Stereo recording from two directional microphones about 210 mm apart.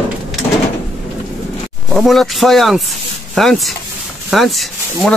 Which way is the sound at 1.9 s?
Centre (ahead or behind).